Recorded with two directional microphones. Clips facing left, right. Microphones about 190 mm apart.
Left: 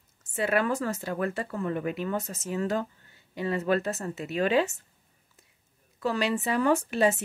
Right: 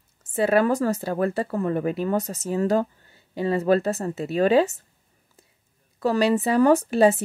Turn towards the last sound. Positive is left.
turn(degrees=-35)  # may be behind; listen again after turning